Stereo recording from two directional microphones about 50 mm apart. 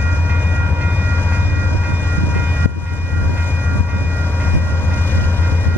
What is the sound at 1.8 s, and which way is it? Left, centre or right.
Train, left.